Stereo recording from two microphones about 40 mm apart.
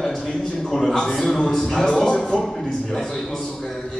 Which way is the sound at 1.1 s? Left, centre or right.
Centre.